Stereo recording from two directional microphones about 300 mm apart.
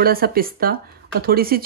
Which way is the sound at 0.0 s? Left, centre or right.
Right.